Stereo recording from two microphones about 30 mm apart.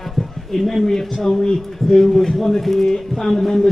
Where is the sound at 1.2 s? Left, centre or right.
Left.